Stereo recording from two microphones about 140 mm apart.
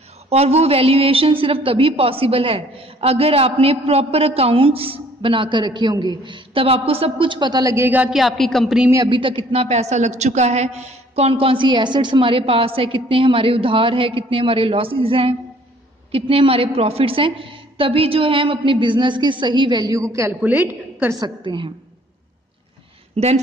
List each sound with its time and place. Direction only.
0.3 s a woman's voice: 50° right (ahead or behind); by 8.1 s 15° right (ahead or behind)
8.1 s speech: centre (ahead or behind)
8.9 s a woman's voice: 35° right (ahead or behind); by 21.2 s 15° right (ahead or behind)
21.2 s a woman's voice: 35° right (ahead or behind)
23.1 s speech: 50° right (ahead or behind)